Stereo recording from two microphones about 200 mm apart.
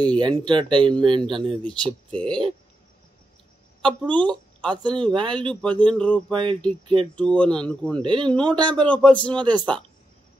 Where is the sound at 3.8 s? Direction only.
25° right (ahead or behind).